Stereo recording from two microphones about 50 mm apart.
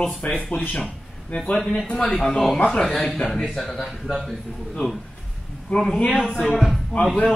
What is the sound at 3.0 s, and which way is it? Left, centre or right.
Speech, left.